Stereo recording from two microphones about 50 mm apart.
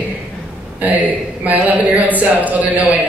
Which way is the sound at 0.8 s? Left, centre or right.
Right.